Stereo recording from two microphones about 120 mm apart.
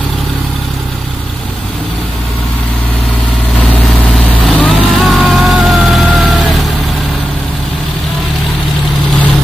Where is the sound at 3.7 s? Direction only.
Centre (ahead or behind).